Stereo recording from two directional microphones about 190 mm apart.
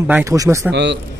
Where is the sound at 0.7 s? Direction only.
65° right (ahead or behind).